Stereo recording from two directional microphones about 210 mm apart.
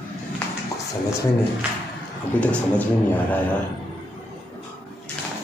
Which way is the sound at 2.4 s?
5° left (ahead or behind).